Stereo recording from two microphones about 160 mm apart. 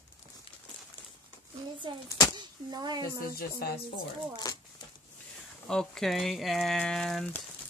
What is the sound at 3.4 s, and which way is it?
Speech, 75° left (ahead or behind).